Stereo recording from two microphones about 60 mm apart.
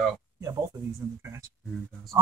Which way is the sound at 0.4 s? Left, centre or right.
Right.